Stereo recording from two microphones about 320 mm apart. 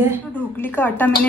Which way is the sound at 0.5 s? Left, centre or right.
Centre.